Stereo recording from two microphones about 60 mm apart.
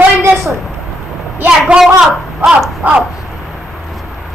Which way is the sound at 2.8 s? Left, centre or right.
Right.